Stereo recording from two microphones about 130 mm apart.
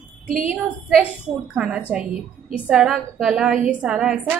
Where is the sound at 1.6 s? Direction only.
5° right (ahead or behind).